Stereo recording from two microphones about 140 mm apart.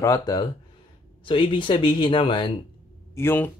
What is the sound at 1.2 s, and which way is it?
Speech, 35° left (ahead or behind).